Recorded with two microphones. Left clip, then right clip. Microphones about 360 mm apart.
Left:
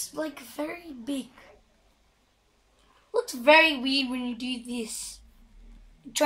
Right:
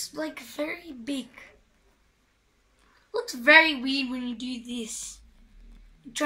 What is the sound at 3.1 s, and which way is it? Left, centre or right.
A woman's voice, centre.